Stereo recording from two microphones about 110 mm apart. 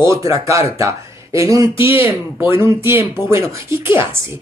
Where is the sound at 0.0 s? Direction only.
25° right (ahead or behind).